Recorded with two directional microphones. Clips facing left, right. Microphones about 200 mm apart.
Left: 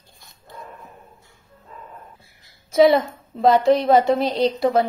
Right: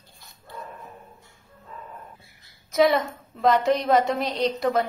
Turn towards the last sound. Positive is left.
turn(degrees=30)  # may be behind; listen again after turning